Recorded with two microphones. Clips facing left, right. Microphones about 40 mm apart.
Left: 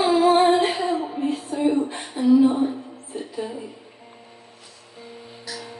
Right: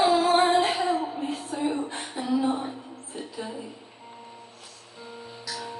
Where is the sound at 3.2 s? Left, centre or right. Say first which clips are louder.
Left 5 dB; centre.